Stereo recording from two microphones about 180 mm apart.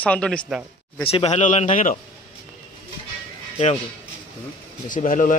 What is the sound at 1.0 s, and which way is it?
Speech, 35° left (ahead or behind).